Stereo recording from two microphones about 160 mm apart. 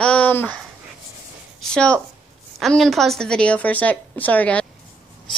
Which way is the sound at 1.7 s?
5° left (ahead or behind).